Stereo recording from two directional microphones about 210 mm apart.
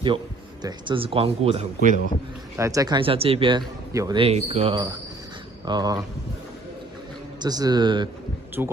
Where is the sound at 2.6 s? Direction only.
15° right (ahead or behind).